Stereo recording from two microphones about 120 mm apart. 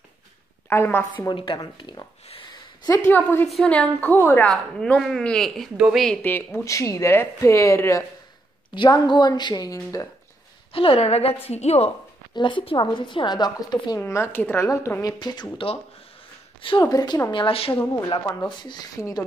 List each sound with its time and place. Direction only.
0.7 s speech: 20° left (ahead or behind)
1.1 s speech: 40° left (ahead or behind)
3.1 s a woman's voice: 15° left (ahead or behind)
3.4 s a woman's voice: centre (ahead or behind)
3.7 s a woman's voice: 10° left (ahead or behind)
6.2 s speech: 20° left (ahead or behind)
8.7 s speech: 40° left (ahead or behind)
10.7 s a woman's voice: 50° left (ahead or behind)
12.4 s speech: 45° left (ahead or behind)
14.0 s speech: 20° left (ahead or behind)
15.5 s a woman's voice: 50° left (ahead or behind)
16.9 s speech: 35° left (ahead or behind)
17.3 s a woman's voice: 50° left (ahead or behind)
18.5 s speech: 40° left (ahead or behind)